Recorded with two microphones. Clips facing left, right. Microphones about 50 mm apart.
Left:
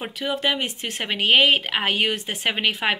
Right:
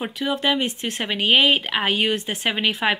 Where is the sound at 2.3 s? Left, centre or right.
Left.